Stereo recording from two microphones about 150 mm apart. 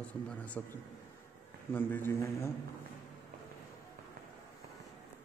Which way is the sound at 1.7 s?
15° left (ahead or behind).